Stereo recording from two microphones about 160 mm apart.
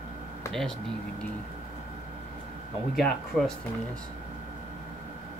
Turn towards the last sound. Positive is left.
turn(degrees=5)  # may be behind; listen again after turning